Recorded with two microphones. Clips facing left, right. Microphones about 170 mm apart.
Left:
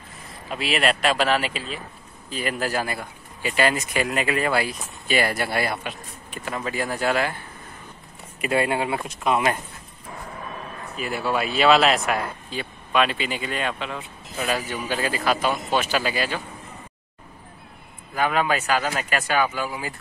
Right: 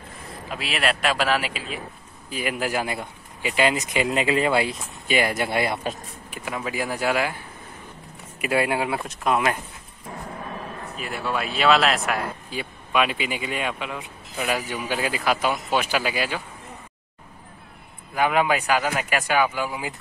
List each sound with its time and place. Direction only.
0.5 s speech: centre (ahead or behind); by 5.8 s 20° right (ahead or behind)
6.3 s speech: 10° right (ahead or behind)
8.4 s speech: 5° right (ahead or behind)
11.0 s speech: centre (ahead or behind)
12.4 s speech: 10° right (ahead or behind)
18.1 s speech: 15° right (ahead or behind)